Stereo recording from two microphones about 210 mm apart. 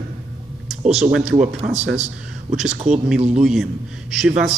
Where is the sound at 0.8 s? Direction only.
30° right (ahead or behind).